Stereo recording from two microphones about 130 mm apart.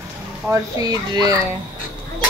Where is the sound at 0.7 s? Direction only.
30° right (ahead or behind).